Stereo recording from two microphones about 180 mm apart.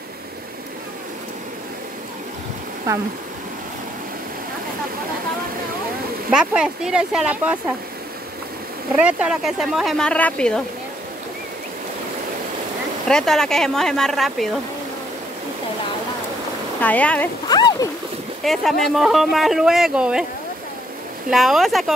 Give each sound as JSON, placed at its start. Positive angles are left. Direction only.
{"t": 2.9, "sound": "speech", "side_deg": -20}
{"t": 6.3, "sound": "speech", "side_deg": -5}
{"t": 8.9, "sound": "speech", "side_deg": -5}
{"t": 13.1, "sound": "speech", "side_deg": 5}
{"t": 16.8, "sound": "speech", "side_deg": 10}
{"t": 17.5, "sound": "speech", "side_deg": 20}
{"t": 18.4, "sound": "speech", "side_deg": 0}
{"t": 21.3, "sound": "speech", "side_deg": 0}